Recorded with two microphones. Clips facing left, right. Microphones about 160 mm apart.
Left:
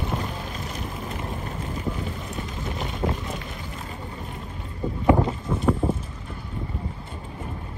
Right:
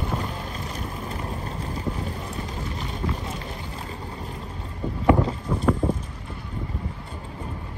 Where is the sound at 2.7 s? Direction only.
35° right (ahead or behind).